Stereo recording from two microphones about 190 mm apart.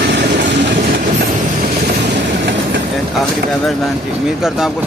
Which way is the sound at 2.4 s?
65° right (ahead or behind).